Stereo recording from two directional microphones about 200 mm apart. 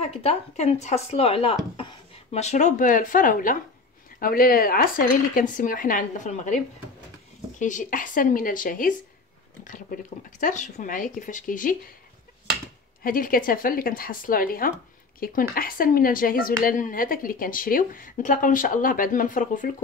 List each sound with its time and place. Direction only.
0.0 s a woman's voice: 30° left (ahead or behind)
13.0 s a woman's voice: 45° left (ahead or behind)